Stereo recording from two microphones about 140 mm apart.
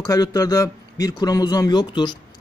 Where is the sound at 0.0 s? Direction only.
25° left (ahead or behind).